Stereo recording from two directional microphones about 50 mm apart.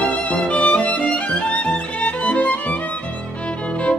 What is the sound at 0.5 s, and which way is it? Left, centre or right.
Music, left.